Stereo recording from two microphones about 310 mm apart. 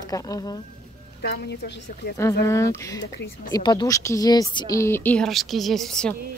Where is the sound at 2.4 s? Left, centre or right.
Centre.